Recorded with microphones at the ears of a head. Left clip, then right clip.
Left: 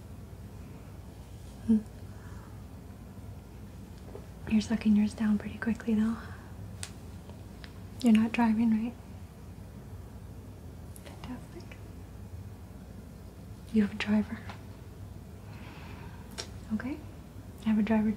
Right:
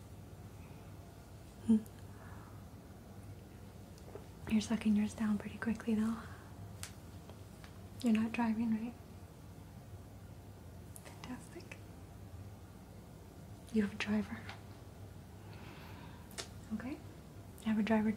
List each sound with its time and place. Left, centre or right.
4.5 s speech: left
8.0 s speech: left
13.7 s speech: left
16.3 s a sound: left
17.6 s speech: left